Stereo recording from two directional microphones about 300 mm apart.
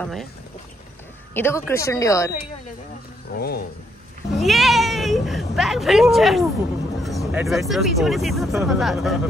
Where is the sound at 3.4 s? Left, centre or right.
Left.